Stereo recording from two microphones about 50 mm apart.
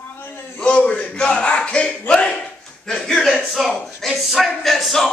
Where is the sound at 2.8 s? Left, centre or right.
Centre.